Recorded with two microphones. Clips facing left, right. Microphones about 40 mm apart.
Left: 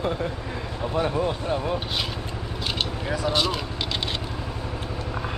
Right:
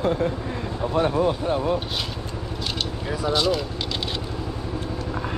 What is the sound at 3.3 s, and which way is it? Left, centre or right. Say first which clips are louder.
Speech: right 4 dB; centre.